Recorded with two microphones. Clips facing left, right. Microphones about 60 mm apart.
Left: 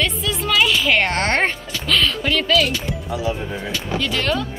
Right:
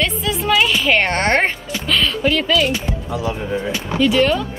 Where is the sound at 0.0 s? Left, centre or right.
Centre.